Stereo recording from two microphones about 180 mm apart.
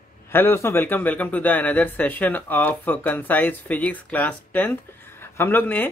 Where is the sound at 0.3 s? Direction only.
15° left (ahead or behind).